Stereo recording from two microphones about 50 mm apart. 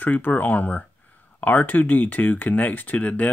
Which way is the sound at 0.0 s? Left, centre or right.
Left.